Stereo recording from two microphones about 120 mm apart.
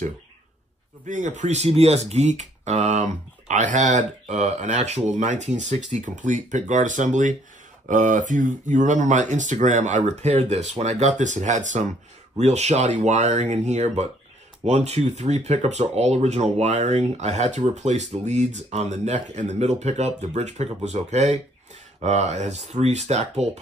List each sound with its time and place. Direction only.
1.0 s speech: 90° right
12.4 s speech: 65° right (ahead or behind)